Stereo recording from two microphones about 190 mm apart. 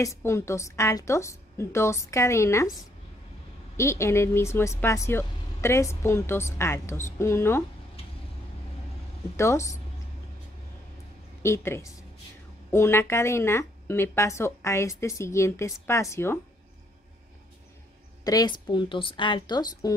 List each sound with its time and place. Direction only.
0.0 s speech: 15° left (ahead or behind)
9.4 s speech: 15° left (ahead or behind)
11.4 s speech: 15° left (ahead or behind)
18.2 s a woman's voice: 20° left (ahead or behind)